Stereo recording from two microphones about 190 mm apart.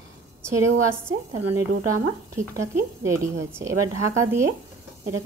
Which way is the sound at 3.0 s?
15° right (ahead or behind).